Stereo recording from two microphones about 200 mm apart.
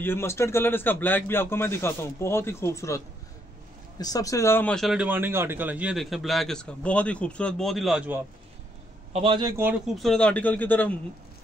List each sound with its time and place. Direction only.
0.0 s a man's voice: 10° left (ahead or behind)
4.0 s a man's voice: 20° left (ahead or behind); by 8.2 s centre (ahead or behind)
9.1 s a man's voice: 25° right (ahead or behind)
9.9 s a man's voice: 5° left (ahead or behind)